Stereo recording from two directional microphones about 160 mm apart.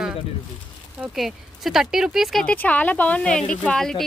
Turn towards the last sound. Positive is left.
turn(degrees=5)  # may be behind; listen again after turning